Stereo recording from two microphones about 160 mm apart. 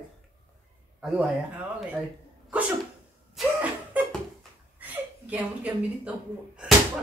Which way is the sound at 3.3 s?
10° right (ahead or behind).